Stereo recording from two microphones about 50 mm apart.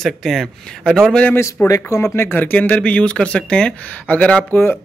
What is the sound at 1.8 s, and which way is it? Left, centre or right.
Speech, left.